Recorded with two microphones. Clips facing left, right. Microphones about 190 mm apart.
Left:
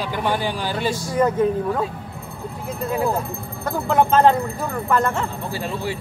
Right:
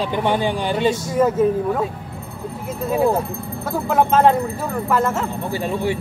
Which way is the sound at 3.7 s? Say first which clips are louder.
Even; 5° right (ahead or behind).